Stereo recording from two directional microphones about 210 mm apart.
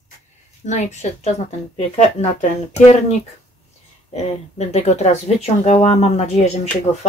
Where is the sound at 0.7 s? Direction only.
35° left (ahead or behind).